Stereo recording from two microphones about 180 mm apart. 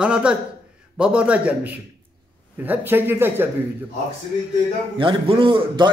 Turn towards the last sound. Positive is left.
turn(degrees=-25)  # may be behind; listen again after turning